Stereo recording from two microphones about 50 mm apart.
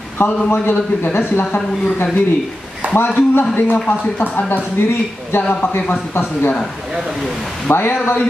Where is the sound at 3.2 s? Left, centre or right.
Left.